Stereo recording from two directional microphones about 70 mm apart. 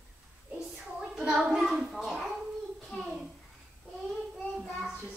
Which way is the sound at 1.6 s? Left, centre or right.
Centre.